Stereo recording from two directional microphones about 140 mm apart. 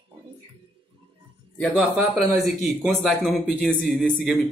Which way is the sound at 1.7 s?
10° right (ahead or behind).